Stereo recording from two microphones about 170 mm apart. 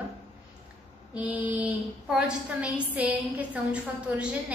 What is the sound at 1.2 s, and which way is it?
A woman's voice, 10° right (ahead or behind).